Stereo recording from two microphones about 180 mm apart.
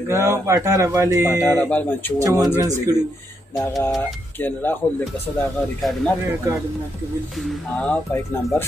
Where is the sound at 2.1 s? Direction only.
15° right (ahead or behind).